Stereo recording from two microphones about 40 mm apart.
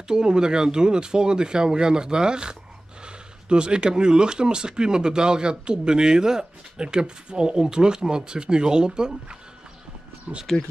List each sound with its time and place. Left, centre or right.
0.1 s speech: right
10.5 s speech: centre